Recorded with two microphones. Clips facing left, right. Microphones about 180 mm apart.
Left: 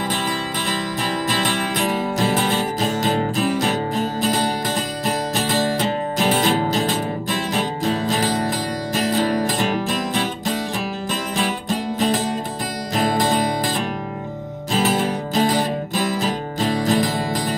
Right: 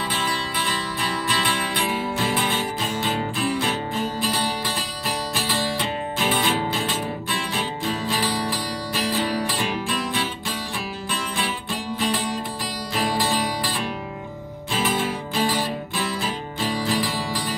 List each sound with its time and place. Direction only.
1.3 s music: 45° left (ahead or behind)